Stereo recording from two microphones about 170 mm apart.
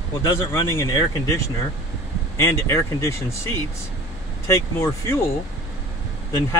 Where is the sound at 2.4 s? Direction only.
15° left (ahead or behind).